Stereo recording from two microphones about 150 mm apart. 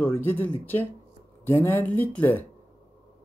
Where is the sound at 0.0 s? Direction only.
15° left (ahead or behind).